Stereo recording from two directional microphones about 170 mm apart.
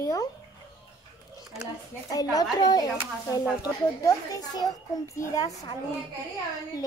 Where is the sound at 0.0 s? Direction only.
20° left (ahead or behind).